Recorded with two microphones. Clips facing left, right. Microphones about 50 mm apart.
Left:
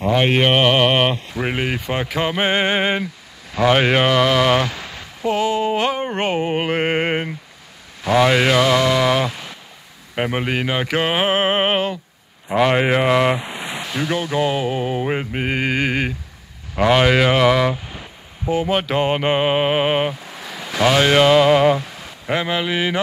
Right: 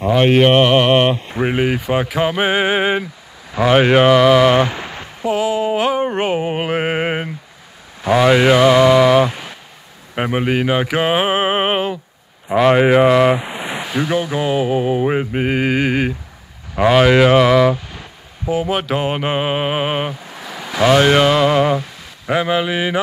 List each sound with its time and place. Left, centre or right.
0.0 s speech: centre
4.6 s a sound: right
5.2 s speech: centre
8.0 s mantra: centre
9.3 s vehicle: centre
10.1 s speech: centre
18.4 s mantra: centre